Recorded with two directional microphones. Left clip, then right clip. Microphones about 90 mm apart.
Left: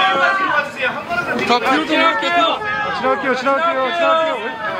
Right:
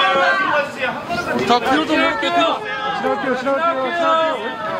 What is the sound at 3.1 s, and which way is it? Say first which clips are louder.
A man's voice: left 3 dB; 35° left (ahead or behind).